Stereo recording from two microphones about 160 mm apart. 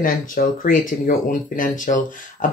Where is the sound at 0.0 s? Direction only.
60° left (ahead or behind).